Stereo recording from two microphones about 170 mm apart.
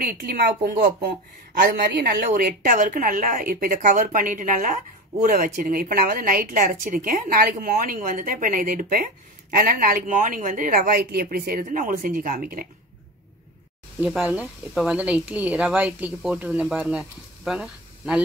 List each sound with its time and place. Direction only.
0.0 s a woman's voice: 65° right (ahead or behind)
14.0 s speech: 5° right (ahead or behind)